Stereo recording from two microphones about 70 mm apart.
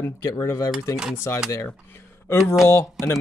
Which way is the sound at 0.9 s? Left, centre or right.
Centre.